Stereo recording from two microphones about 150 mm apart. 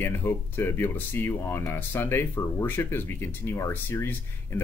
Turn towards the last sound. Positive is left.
turn(degrees=15)  # may be behind; listen again after turning